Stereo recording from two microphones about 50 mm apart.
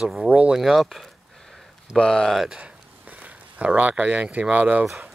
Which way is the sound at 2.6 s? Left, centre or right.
Right.